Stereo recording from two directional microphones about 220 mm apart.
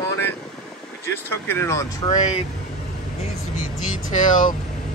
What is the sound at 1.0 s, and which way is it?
Speech, 10° left (ahead or behind).